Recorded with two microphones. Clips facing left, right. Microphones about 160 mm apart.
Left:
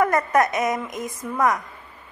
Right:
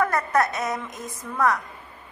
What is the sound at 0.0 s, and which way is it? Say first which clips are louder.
A woman's voice: left 3 dB; 15° left (ahead or behind).